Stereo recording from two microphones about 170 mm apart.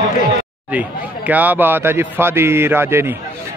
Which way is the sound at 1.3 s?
10° right (ahead or behind).